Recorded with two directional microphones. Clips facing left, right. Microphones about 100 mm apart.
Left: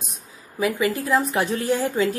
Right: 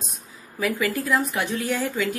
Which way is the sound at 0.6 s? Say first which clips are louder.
Left 2 dB; 20° left (ahead or behind).